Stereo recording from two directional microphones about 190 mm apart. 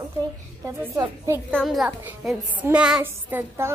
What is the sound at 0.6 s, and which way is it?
Speech, 15° right (ahead or behind).